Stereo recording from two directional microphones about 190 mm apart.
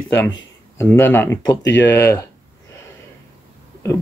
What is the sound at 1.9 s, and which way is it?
Speech, 15° left (ahead or behind).